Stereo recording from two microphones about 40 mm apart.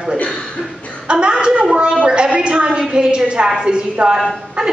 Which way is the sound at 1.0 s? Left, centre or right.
Right.